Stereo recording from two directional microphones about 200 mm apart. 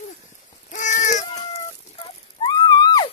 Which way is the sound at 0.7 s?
40° left (ahead or behind).